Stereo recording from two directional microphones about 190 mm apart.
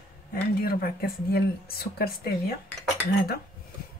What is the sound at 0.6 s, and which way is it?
Speech, 55° left (ahead or behind).